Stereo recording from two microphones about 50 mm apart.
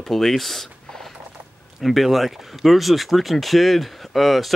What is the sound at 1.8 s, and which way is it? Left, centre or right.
Speech, centre.